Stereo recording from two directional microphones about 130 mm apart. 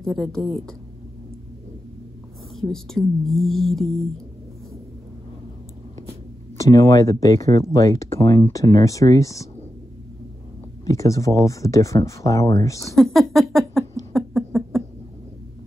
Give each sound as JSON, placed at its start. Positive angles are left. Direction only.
{"t": 0.0, "sound": "speech", "side_deg": 5}
{"t": 2.5, "sound": "speech", "side_deg": 5}
{"t": 6.6, "sound": "speech", "side_deg": 25}
{"t": 10.9, "sound": "speech", "side_deg": 25}
{"t": 12.9, "sound": "a sound", "side_deg": 0}